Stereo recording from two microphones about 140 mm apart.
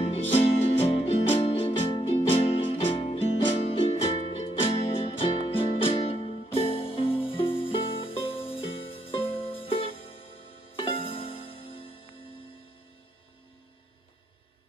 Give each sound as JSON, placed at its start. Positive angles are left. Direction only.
{"t": 0.0, "sound": "music", "side_deg": 45}